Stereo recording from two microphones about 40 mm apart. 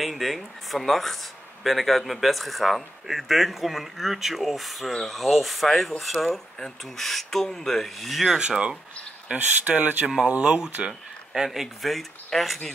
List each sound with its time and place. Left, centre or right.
0.0 s speech: centre
8.4 s speech: right
9.3 s speech: right
10.6 s speech: right
11.4 s speech: centre